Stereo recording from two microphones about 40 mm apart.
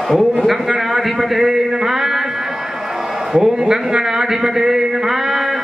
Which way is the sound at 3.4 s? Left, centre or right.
Centre.